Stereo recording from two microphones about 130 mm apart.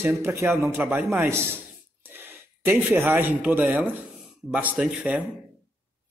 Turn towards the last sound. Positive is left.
turn(degrees=-10)  # may be behind; listen again after turning